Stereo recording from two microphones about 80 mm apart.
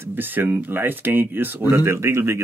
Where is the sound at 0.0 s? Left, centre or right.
Right.